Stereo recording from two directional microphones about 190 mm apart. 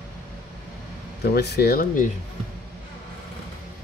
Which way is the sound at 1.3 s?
60° left (ahead or behind).